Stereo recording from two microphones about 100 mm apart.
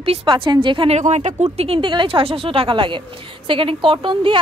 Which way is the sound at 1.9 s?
60° right (ahead or behind).